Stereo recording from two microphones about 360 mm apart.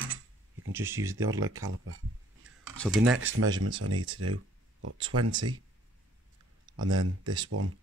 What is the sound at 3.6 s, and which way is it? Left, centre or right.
Speech, right.